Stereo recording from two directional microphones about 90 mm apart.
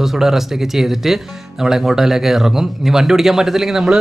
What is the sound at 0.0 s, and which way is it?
Speech, 5° right (ahead or behind).